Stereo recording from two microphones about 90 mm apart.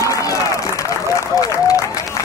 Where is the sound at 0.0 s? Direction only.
35° left (ahead or behind).